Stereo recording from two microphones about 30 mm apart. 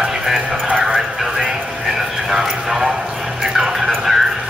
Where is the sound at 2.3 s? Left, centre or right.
Centre.